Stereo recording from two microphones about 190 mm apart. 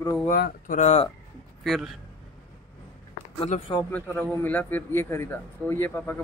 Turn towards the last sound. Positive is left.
turn(degrees=10)  # may be behind; listen again after turning